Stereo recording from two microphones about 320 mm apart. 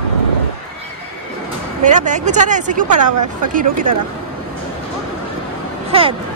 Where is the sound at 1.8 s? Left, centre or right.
Right.